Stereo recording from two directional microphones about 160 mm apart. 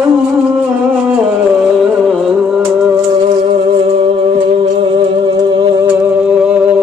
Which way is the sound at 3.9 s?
35° right (ahead or behind).